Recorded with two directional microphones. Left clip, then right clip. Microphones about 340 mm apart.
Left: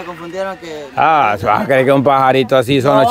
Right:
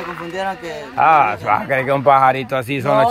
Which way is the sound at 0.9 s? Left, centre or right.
Left.